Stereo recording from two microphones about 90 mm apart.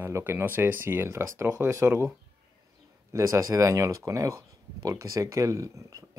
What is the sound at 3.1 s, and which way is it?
Speech, 35° right (ahead or behind).